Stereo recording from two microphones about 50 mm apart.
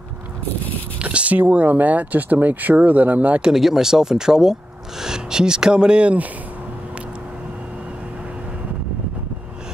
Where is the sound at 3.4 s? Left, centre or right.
Centre; by 6.3 s right.